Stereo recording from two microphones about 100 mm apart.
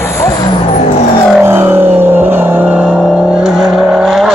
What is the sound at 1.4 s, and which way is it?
Vehicle, 25° right (ahead or behind).